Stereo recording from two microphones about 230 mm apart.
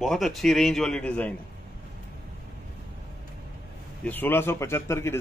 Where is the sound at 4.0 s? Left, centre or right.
Centre.